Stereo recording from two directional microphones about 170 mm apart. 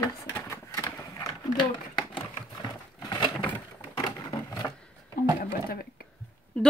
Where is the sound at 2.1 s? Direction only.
25° left (ahead or behind).